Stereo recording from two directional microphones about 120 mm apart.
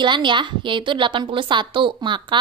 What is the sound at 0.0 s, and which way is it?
A woman's voice, 40° right (ahead or behind).